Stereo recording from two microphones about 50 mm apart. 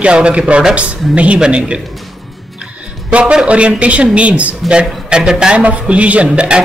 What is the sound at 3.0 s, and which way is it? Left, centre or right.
A man's voice, right.